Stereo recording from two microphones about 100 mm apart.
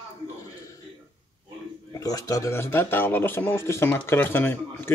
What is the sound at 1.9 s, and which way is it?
Speech, 35° left (ahead or behind).